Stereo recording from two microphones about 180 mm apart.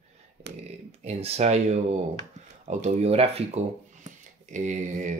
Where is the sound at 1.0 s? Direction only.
35° right (ahead or behind).